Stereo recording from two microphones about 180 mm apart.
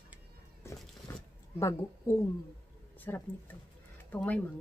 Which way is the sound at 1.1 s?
15° left (ahead or behind).